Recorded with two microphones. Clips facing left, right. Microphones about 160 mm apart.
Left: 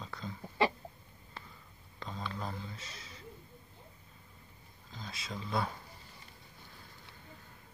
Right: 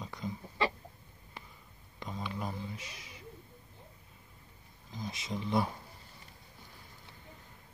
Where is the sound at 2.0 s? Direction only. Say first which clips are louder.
Right 2 dB; 10° right (ahead or behind).